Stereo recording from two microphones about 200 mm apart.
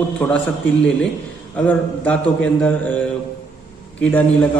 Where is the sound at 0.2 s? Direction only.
5° left (ahead or behind).